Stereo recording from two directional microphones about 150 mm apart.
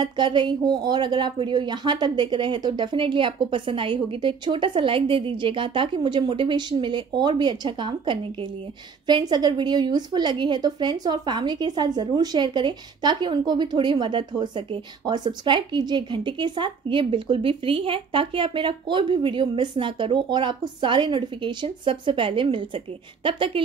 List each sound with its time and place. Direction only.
0.0 s a woman's voice: 30° right (ahead or behind)